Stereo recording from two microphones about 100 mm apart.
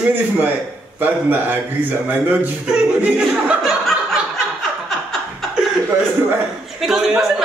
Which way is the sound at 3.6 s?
Centre (ahead or behind).